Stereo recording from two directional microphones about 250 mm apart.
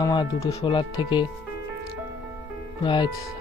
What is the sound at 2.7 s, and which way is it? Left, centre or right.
Speech, centre.